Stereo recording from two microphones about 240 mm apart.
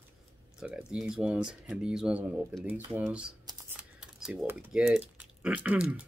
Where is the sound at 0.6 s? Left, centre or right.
Centre.